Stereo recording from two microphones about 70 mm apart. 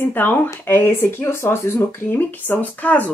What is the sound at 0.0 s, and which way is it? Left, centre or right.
Speech, left.